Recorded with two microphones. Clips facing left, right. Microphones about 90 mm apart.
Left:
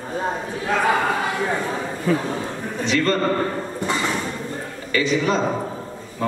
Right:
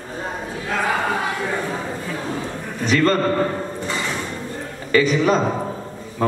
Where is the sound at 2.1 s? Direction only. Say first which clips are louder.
Left 8 dB; 55° left (ahead or behind).